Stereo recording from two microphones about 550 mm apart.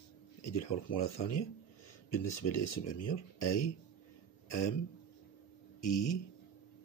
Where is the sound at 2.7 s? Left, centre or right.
Left.